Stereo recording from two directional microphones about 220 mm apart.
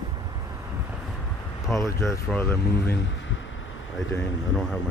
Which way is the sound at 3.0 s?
55° left (ahead or behind).